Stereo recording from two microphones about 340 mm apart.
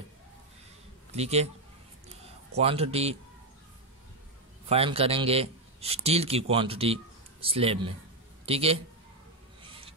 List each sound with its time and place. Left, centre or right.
1.1 s a man's voice: centre
2.5 s speech: centre
4.6 s a man's voice: centre